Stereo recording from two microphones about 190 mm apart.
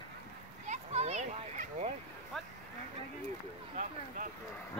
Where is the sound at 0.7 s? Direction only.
35° right (ahead or behind).